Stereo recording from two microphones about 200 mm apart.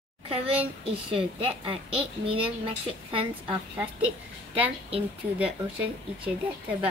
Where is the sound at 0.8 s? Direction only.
25° right (ahead or behind).